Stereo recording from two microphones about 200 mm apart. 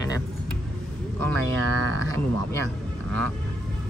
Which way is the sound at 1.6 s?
90° right.